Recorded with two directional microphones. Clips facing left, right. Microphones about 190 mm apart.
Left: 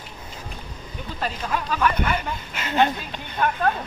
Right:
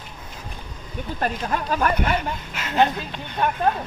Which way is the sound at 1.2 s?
45° right (ahead or behind).